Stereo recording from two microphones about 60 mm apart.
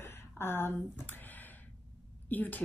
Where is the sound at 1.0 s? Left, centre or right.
Left.